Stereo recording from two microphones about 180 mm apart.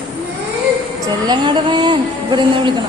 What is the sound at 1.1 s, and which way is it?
A woman's voice, 25° right (ahead or behind).